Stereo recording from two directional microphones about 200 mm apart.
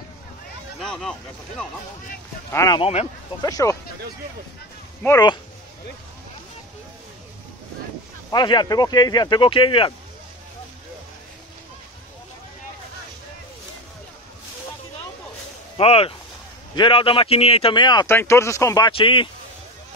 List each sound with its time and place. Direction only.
0.7 s a sound: 5° left (ahead or behind)
2.5 s speech: 15° left (ahead or behind)
2.8 s speech: 30° left (ahead or behind)
3.4 s speech: 15° left (ahead or behind)
5.0 s speech: 20° left (ahead or behind)
8.3 s a man's voice: 20° left (ahead or behind)
15.8 s a man's voice: 30° left (ahead or behind)
18.9 s a man's voice: 25° left (ahead or behind)